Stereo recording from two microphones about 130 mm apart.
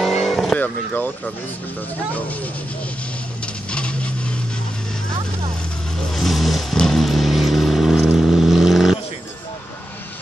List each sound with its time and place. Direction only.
0.0 s vehicle: centre (ahead or behind)
0.9 s speech: 15° left (ahead or behind)
3.7 s a sound: 10° left (ahead or behind)
6.1 s vehicle: centre (ahead or behind)